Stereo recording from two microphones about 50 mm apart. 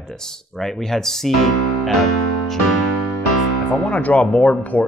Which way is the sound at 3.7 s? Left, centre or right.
Left.